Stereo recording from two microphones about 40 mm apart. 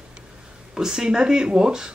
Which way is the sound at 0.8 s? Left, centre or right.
Centre.